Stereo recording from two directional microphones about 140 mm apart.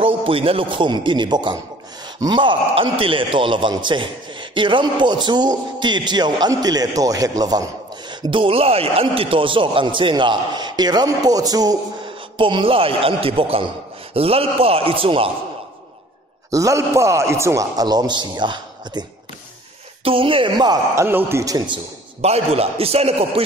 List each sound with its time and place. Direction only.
0.0 s a man's voice: 40° right (ahead or behind)
16.4 s a man's voice: 25° right (ahead or behind)
22.2 s a man's voice: 50° right (ahead or behind)